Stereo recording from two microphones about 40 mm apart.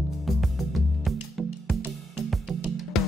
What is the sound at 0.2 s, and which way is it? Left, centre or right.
Music, centre.